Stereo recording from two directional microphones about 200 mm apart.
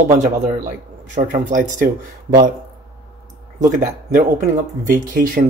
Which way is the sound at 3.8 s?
40° right (ahead or behind).